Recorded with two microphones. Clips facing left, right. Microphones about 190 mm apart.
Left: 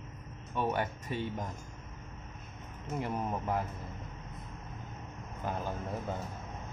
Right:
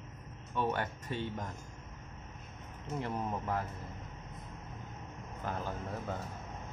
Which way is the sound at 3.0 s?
15° left (ahead or behind).